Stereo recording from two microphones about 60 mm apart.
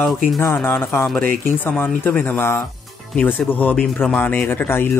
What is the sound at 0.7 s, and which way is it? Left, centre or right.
Speech, left.